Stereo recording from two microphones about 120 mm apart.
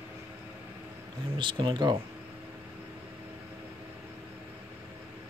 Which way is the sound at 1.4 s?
40° right (ahead or behind).